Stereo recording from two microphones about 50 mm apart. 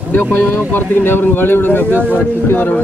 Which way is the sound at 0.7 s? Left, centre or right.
Left.